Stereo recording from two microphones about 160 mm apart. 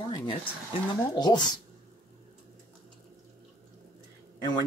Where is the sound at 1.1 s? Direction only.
25° left (ahead or behind).